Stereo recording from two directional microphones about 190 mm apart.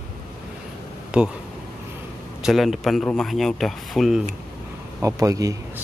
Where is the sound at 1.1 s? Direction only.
5° right (ahead or behind).